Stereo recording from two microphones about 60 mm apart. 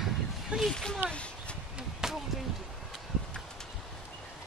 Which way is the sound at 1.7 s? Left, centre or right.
Centre.